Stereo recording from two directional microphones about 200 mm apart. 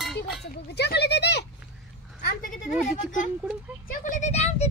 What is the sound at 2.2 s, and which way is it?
Speech, 45° left (ahead or behind).